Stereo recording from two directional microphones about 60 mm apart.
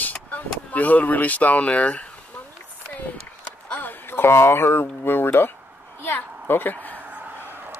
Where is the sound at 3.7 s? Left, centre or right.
Left.